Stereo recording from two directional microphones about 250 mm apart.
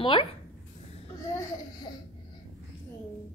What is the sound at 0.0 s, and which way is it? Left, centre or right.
Speech, left.